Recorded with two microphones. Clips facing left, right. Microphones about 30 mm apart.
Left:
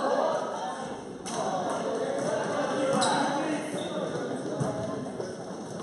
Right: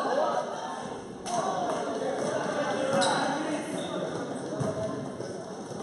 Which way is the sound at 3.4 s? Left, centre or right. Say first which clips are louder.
Left 1 dB; centre.